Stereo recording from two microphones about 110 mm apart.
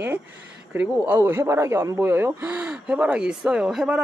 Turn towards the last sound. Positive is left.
turn(degrees=-5)  # may be behind; listen again after turning